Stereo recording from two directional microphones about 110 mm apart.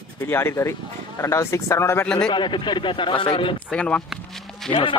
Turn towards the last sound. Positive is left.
turn(degrees=0)  # may be behind; listen again after turning